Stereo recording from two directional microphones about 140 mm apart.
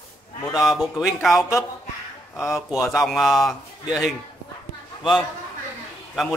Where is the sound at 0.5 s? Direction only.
Centre (ahead or behind).